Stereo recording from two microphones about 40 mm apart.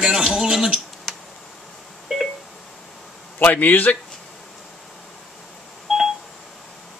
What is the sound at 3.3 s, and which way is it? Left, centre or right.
Speech, left.